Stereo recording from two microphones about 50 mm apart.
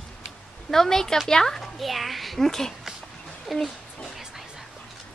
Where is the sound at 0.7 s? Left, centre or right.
Centre.